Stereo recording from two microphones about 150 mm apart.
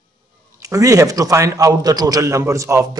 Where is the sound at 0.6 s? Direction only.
20° right (ahead or behind).